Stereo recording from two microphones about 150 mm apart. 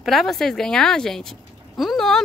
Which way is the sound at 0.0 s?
Centre (ahead or behind).